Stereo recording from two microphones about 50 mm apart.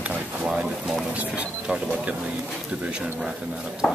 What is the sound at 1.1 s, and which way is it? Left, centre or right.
Speech, right.